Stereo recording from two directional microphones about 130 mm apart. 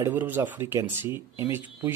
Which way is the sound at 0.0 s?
15° right (ahead or behind).